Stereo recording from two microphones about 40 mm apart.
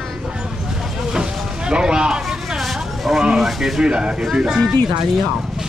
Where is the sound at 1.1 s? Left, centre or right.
Right.